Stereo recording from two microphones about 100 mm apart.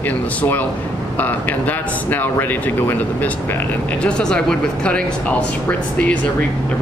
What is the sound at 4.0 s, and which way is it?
Speech, 10° left (ahead or behind).